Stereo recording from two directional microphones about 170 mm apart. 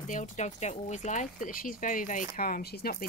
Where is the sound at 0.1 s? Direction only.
45° left (ahead or behind).